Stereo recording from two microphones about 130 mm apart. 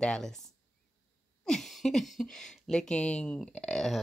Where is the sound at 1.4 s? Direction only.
5° left (ahead or behind).